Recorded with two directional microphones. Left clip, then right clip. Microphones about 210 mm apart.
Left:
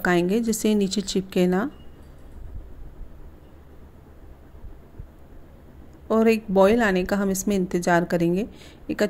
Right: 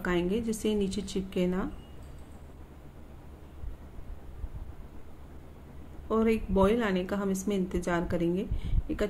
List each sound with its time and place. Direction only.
0.0 s a woman's voice: 40° left (ahead or behind)
6.0 s a woman's voice: 40° left (ahead or behind)